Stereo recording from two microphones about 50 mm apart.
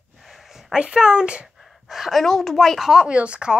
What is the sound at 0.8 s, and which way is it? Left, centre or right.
Speech, centre.